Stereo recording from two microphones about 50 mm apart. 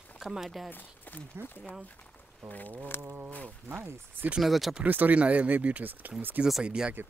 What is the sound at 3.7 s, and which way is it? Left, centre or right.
Speech, right.